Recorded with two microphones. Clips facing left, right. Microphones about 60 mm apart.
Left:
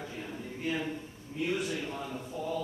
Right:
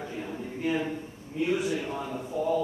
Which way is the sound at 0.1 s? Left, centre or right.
Centre.